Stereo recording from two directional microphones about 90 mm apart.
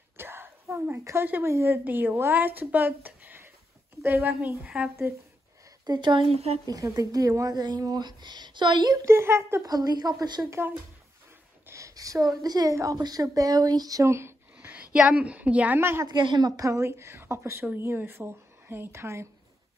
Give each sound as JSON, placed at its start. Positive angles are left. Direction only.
{"t": 0.2, "sound": "a sound", "side_deg": -25}
{"t": 1.0, "sound": "a woman's voice", "side_deg": -25}
{"t": 4.6, "sound": "speech", "side_deg": -10}
{"t": 5.9, "sound": "speech", "side_deg": -60}
{"t": 6.7, "sound": "speech", "side_deg": -45}
{"t": 9.0, "sound": "a woman's voice", "side_deg": -25}
{"t": 9.7, "sound": "speech", "side_deg": -45}
{"t": 11.6, "sound": "a woman's voice", "side_deg": -35}
{"t": 14.7, "sound": "a woman's voice", "side_deg": -15}
{"t": 16.1, "sound": "a woman's voice", "side_deg": -55}